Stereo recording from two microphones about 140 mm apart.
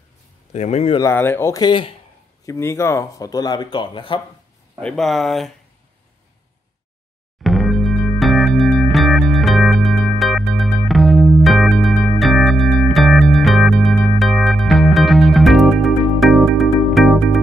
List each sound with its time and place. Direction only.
0.5 s speech: 55° left (ahead or behind)
1.0 s speech: 15° left (ahead or behind)
1.6 s speech: 35° left (ahead or behind)
2.4 s speech: 20° left (ahead or behind)
4.8 s speech: centre (ahead or behind)
7.4 s music: centre (ahead or behind)